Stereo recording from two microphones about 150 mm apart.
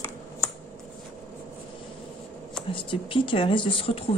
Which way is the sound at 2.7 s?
35° left (ahead or behind).